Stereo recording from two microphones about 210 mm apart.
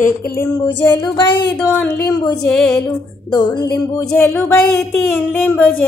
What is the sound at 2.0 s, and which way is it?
Music, 15° left (ahead or behind).